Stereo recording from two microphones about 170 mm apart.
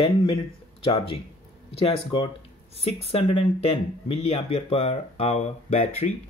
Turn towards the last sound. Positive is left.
turn(degrees=40)  # may be behind; listen again after turning